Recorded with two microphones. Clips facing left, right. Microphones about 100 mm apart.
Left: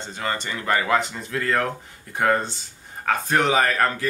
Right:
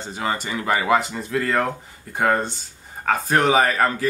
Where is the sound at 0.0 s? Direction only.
5° right (ahead or behind).